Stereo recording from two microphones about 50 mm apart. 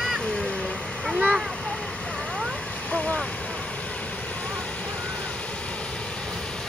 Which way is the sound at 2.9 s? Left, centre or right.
Left.